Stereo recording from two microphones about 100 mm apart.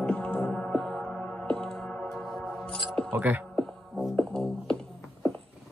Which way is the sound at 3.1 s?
20° right (ahead or behind).